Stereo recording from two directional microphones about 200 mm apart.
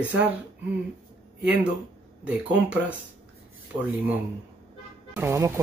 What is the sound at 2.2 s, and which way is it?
Speech, 5° right (ahead or behind).